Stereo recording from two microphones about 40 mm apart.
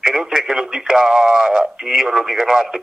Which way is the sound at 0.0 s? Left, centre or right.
Centre.